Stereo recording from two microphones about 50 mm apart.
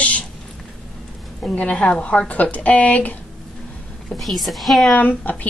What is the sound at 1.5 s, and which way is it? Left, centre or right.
A woman's voice, left.